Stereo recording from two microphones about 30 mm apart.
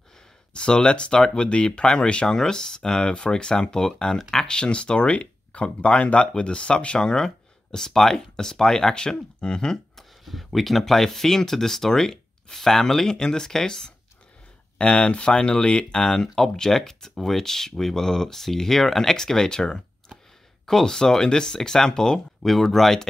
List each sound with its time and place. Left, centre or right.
0.5 s speech: left
2.2 s speech: centre
4.5 s speech: left; by 8.9 s centre
8.9 s speech: left
10.2 s speech: centre
14.8 s speech: left
16.0 s speech: left
20.8 s speech: left
22.4 s speech: centre